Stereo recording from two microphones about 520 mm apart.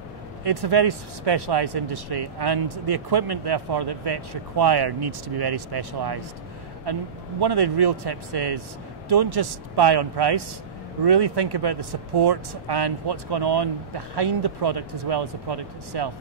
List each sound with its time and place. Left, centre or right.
0.4 s speech: right